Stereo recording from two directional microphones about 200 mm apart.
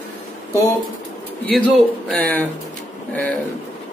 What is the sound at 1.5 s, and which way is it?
Speech, 5° left (ahead or behind).